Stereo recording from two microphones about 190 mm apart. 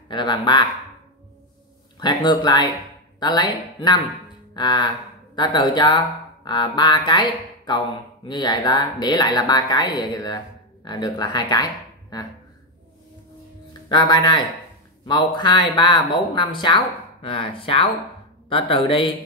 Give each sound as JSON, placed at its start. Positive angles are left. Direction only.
{"t": 0.1, "sound": "a woman's voice", "side_deg": 25}
{"t": 2.0, "sound": "a woman's voice", "side_deg": 20}
{"t": 13.8, "sound": "a woman's voice", "side_deg": 20}